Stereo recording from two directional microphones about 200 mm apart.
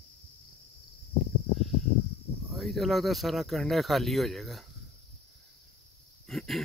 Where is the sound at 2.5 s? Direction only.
Centre (ahead or behind).